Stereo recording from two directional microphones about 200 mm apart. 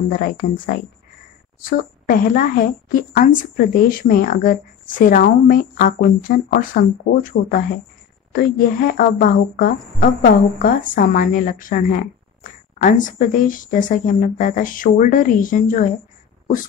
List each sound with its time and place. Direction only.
0.4 s a woman's voice: 50° left (ahead or behind)
1.6 s a woman's voice: 45° left (ahead or behind)